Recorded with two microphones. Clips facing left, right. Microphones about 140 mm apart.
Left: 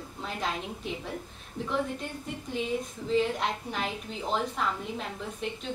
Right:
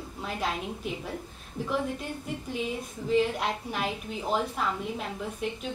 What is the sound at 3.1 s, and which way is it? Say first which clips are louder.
A woman's voice: right 1 dB; 5° right (ahead or behind).